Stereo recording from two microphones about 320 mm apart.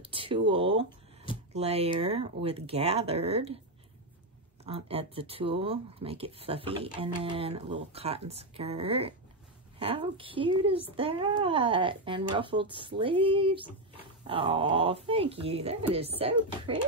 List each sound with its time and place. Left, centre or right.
0.0 s speech: centre
4.6 s speech: centre